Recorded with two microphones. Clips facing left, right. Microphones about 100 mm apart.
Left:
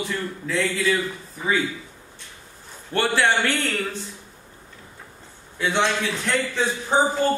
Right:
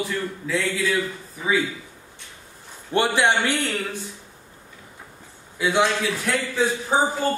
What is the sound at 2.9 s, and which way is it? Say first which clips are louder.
A man's voice: right 1 dB; 15° right (ahead or behind).